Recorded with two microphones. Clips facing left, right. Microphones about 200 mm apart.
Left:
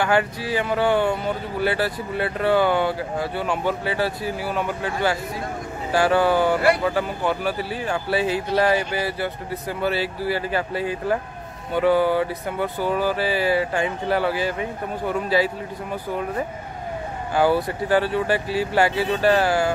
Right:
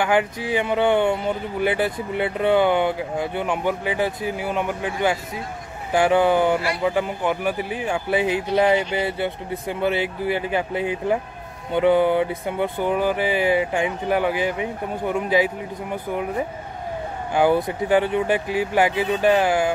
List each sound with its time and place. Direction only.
0.0 s speech: 15° right (ahead or behind)